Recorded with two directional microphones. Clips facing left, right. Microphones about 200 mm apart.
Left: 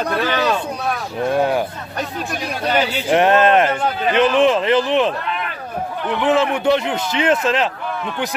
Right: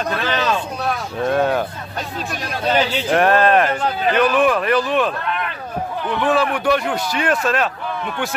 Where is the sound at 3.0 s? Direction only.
20° left (ahead or behind).